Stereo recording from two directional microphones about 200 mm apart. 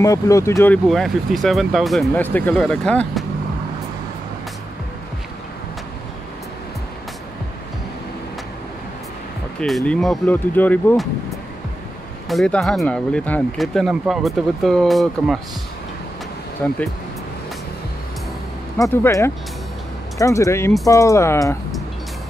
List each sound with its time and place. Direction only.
0.0 s speech: 15° left (ahead or behind)
0.8 s speech: centre (ahead or behind)
9.6 s speech: centre (ahead or behind)
12.3 s speech: centre (ahead or behind)
16.6 s speech: 10° left (ahead or behind)
19.0 s speech: 15° left (ahead or behind)